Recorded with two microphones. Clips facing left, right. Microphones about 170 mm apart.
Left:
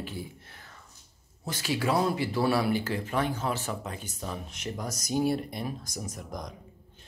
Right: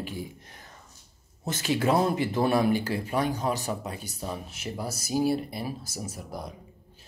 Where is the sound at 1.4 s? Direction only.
20° right (ahead or behind).